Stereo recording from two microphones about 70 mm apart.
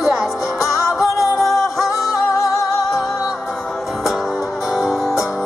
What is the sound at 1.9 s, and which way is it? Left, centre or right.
Music, left.